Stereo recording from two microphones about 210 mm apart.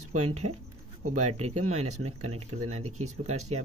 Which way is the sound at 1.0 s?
90° right.